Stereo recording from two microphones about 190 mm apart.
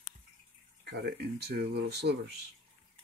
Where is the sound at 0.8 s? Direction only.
60° right (ahead or behind).